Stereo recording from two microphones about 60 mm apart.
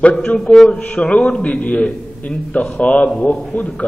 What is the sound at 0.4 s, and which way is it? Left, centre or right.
Speech, centre.